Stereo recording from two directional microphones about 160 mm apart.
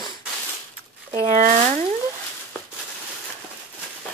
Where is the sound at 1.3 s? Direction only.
50° right (ahead or behind).